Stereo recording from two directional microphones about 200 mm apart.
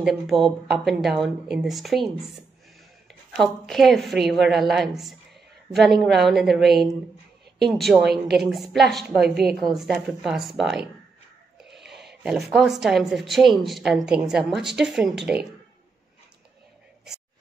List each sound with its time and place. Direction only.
0.0 s speech: centre (ahead or behind)
3.3 s speech: centre (ahead or behind)